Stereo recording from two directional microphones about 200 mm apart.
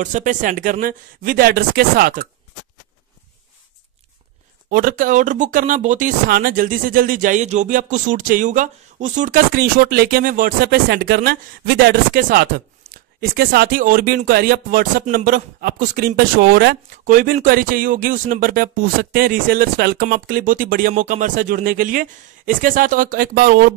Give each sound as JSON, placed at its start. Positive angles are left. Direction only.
{"t": 0.0, "sound": "speech", "side_deg": -35}
{"t": 4.6, "sound": "speech", "side_deg": -45}